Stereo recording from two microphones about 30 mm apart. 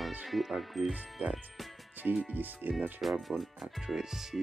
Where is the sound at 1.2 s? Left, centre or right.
Right.